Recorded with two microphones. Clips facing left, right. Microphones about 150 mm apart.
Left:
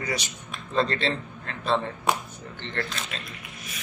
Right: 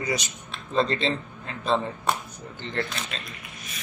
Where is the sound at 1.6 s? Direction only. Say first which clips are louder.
Right 1 dB; 5° left (ahead or behind).